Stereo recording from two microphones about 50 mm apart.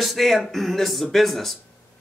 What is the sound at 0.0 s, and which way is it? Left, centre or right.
Speech, centre.